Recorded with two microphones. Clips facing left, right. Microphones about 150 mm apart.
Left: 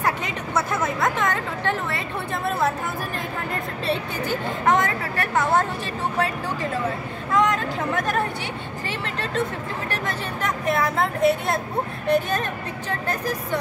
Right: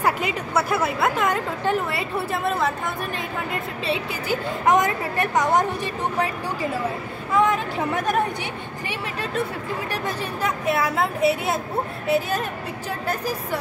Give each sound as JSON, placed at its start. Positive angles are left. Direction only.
{"t": 0.0, "sound": "a woman's voice", "side_deg": -10}
{"t": 3.8, "sound": "speech", "side_deg": 0}
{"t": 4.6, "sound": "a woman's voice", "side_deg": -15}